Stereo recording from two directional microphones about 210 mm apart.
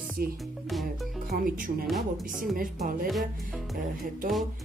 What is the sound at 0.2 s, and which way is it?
Speech, 45° right (ahead or behind).